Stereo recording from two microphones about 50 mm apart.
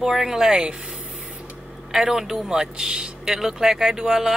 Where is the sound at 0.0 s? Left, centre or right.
Centre.